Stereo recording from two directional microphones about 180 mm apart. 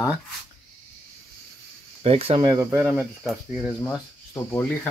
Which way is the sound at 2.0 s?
30° right (ahead or behind).